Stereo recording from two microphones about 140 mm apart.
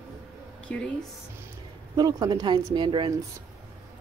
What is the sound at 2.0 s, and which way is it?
Speech, 30° right (ahead or behind).